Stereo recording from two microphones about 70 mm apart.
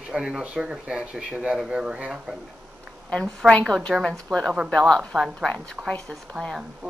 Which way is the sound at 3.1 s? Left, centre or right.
Centre.